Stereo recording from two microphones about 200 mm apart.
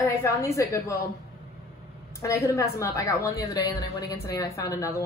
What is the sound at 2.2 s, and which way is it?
A woman's voice, 15° left (ahead or behind).